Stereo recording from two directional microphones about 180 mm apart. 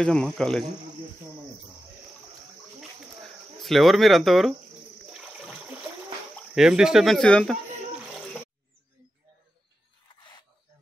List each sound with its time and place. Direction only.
0.0 s speech: 5° left (ahead or behind)
2.8 s a sound: centre (ahead or behind)
5.1 s toilet flush: 5° right (ahead or behind)
6.5 s speech: 5° right (ahead or behind)